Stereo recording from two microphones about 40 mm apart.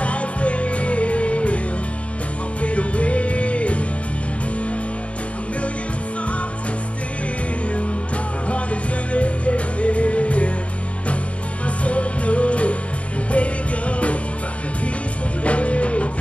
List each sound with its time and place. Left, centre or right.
0.0 s music: left
2.6 s music: left
8.5 s music: left
11.6 s music: left
15.4 s music: left